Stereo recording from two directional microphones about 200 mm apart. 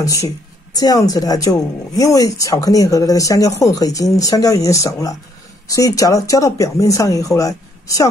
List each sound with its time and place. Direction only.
0.0 s speech: 15° left (ahead or behind)